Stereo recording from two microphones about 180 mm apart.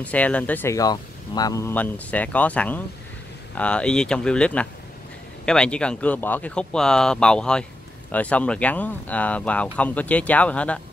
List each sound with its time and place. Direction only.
0.0 s speech: 10° left (ahead or behind)